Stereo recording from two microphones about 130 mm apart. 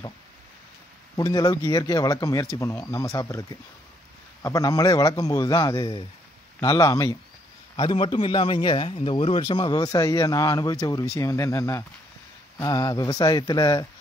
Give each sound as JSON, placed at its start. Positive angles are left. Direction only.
{"t": 1.1, "sound": "a man's voice", "side_deg": 30}
{"t": 7.7, "sound": "a man's voice", "side_deg": 40}
{"t": 9.4, "sound": "a man's voice", "side_deg": 30}